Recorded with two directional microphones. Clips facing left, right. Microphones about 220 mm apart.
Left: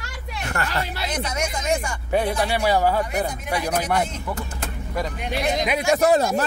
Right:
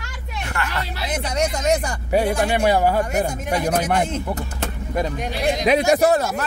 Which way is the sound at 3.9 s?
25° right (ahead or behind).